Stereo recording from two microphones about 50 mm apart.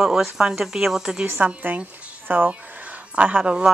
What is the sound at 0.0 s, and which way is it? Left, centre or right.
Speech, centre.